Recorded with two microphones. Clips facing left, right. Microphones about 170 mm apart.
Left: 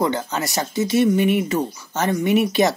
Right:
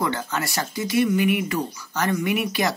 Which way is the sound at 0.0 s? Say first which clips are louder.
Left 4 dB; 20° left (ahead or behind).